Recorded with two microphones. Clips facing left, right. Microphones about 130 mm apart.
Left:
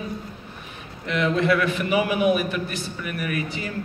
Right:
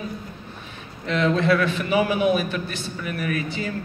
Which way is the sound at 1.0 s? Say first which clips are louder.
Right 1 dB; 30° right (ahead or behind).